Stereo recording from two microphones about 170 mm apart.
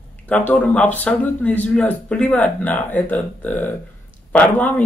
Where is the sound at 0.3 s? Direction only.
10° left (ahead or behind).